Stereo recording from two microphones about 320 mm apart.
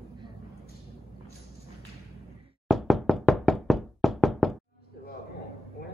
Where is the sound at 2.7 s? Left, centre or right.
Centre.